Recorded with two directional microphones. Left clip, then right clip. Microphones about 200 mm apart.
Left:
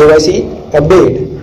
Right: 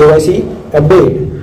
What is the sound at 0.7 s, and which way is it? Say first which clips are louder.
Speech: left 1 dB; 15° left (ahead or behind).